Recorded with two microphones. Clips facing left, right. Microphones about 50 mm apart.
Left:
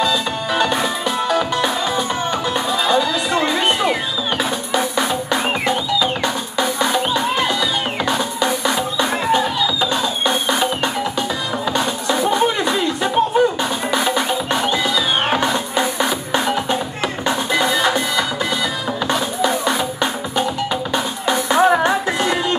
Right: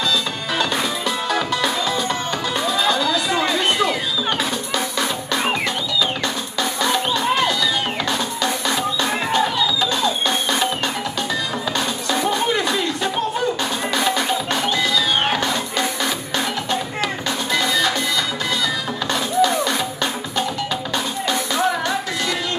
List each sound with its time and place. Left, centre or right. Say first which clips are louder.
0.0 s music: left 3 dB; centre
3.3 s a sound: left 4 dB; centre
4.4 s music: left 3 dB; centre